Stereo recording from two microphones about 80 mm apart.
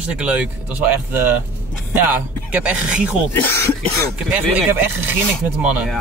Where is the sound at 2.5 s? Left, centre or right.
Centre.